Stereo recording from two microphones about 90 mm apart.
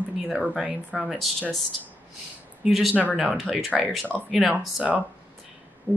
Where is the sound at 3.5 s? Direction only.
15° right (ahead or behind).